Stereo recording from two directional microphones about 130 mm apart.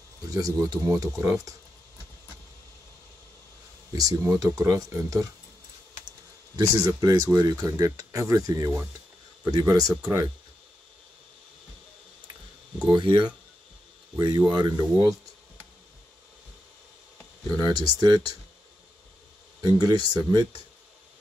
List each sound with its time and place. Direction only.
0.3 s speech: 25° right (ahead or behind)
3.9 s speech: 25° right (ahead or behind)
6.5 s speech: 25° right (ahead or behind)
12.8 s speech: 35° right (ahead or behind)
17.6 s speech: 30° right (ahead or behind)
19.6 s speech: 30° right (ahead or behind)